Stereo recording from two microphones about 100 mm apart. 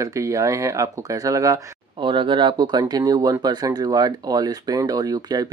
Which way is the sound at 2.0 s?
55° right (ahead or behind).